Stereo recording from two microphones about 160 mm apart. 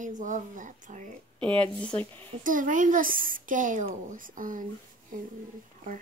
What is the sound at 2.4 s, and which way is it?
Speech, 55° right (ahead or behind).